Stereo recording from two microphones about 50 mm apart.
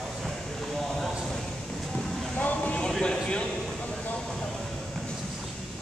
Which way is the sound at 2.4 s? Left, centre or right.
Left.